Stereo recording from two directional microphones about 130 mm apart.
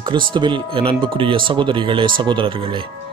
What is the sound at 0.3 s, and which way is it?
Speech, 35° right (ahead or behind).